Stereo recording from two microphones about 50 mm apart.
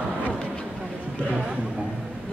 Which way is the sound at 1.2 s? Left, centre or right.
Right.